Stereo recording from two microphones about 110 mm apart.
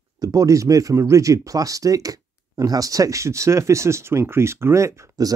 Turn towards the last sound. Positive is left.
turn(degrees=-25)  # may be behind; listen again after turning